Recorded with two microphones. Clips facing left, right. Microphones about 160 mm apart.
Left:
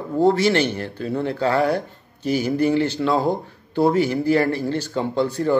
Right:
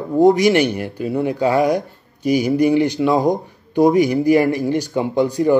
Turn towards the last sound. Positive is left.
turn(degrees=-15)  # may be behind; listen again after turning